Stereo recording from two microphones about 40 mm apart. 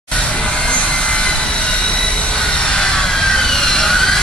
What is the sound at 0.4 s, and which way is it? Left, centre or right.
Vehicle, left.